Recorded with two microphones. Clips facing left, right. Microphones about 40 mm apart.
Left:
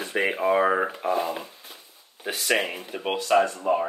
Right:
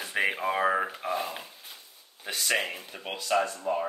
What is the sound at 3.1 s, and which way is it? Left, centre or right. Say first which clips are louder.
Speech: left 6 dB; left.